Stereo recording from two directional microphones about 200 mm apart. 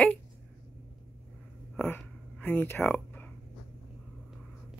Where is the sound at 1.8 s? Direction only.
10° left (ahead or behind).